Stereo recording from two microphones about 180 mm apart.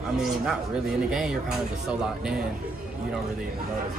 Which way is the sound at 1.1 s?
5° right (ahead or behind).